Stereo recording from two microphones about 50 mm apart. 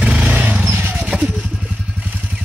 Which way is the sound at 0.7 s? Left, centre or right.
Right.